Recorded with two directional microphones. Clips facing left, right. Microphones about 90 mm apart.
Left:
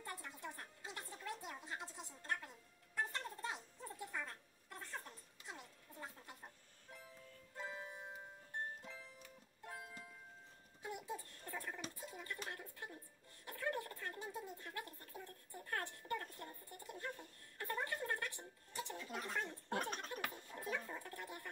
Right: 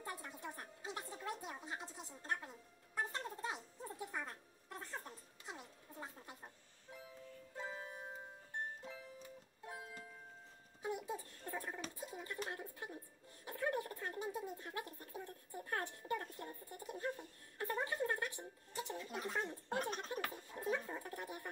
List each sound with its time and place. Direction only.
0.0 s music: 20° right (ahead or behind)
9.7 s music: 20° right (ahead or behind)
10.8 s babbling: 20° right (ahead or behind)
12.0 s a sound: 20° right (ahead or behind)